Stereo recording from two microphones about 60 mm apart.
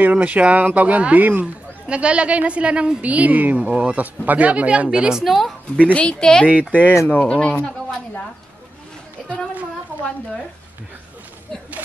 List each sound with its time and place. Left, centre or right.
0.0 s a woman's voice: right
1.9 s a woman's voice: centre
5.2 s a woman's voice: centre
5.8 s speech: left